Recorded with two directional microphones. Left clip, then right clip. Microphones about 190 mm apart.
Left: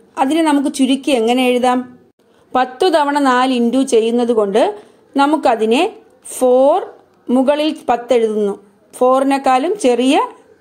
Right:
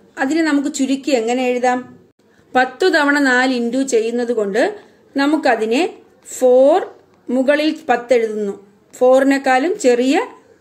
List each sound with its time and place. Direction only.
0.2 s a woman's voice: 30° left (ahead or behind)
2.5 s a woman's voice: 20° left (ahead or behind)